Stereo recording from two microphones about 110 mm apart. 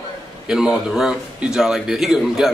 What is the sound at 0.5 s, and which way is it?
A man's voice, 5° right (ahead or behind).